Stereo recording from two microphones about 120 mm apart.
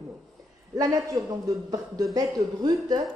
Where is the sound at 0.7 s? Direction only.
30° right (ahead or behind).